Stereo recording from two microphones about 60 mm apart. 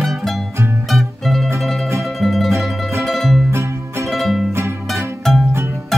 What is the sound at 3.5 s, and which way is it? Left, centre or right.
Music, right.